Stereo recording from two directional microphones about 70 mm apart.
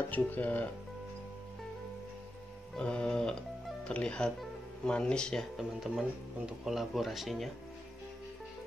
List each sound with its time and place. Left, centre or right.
0.1 s speech: left
2.8 s speech: centre
5.6 s speech: centre